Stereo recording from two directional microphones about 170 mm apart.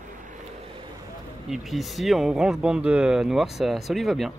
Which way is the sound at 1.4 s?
Centre (ahead or behind).